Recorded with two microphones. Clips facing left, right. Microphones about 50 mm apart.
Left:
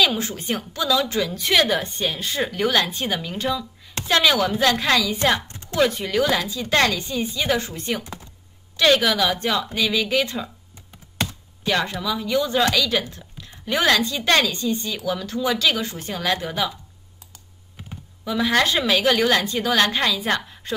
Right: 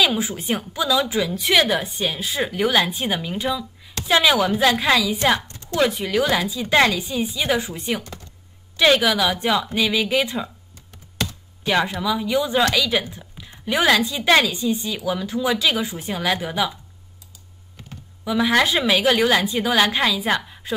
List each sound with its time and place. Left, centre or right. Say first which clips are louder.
0.0 s a woman's voice: right 1 dB; centre
5.5 s a sound: right 4 dB; left
5.8 s a woman's voice: even; centre
11.6 s a woman's voice: right 2 dB; centre
18.2 s a woman's voice: right 2 dB; centre